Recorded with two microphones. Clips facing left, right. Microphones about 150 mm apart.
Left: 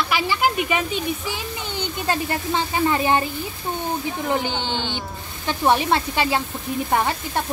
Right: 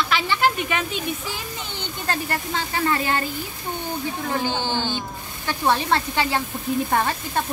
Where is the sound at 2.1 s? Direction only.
15° left (ahead or behind).